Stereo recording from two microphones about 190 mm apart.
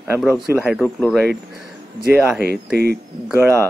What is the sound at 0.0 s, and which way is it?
Speech, 10° right (ahead or behind).